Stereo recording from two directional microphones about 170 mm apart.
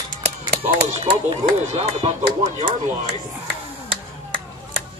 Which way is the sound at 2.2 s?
45° right (ahead or behind).